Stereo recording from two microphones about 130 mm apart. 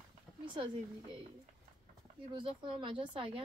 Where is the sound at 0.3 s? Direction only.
10° left (ahead or behind).